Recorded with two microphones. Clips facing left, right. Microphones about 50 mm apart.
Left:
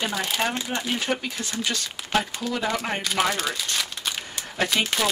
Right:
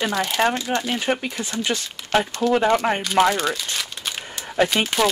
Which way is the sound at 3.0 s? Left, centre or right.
Centre.